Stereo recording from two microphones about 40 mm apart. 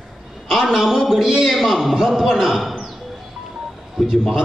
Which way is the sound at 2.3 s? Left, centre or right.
Centre.